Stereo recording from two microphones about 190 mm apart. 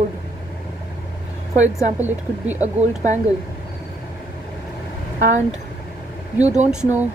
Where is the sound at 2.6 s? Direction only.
35° right (ahead or behind).